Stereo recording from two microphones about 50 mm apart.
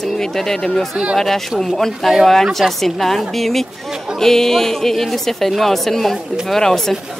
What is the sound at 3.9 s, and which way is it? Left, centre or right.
Speech, centre.